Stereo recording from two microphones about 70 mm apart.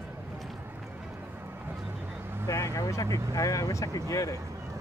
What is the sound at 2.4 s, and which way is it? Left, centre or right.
Speech, left.